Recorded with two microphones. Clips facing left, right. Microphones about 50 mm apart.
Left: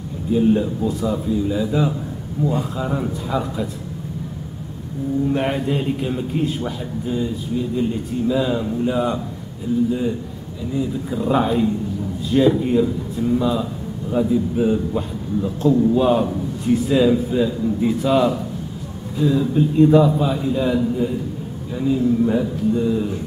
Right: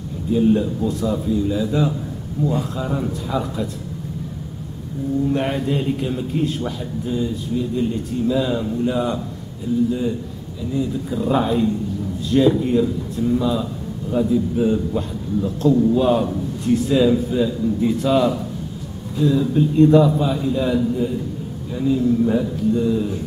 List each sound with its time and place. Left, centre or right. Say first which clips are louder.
0.3 s a man's voice: even; centre
5.3 s a man's voice: even; centre